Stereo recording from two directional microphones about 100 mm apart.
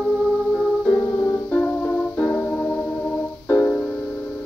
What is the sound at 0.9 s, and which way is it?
Music, 25° left (ahead or behind).